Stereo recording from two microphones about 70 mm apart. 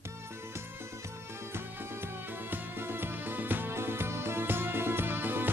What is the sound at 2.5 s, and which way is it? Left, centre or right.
Music, right.